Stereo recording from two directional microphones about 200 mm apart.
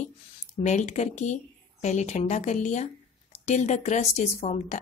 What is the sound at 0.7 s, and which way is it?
A woman's voice, 35° left (ahead or behind).